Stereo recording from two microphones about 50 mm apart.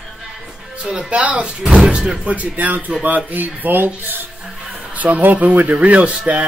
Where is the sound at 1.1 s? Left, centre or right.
Right.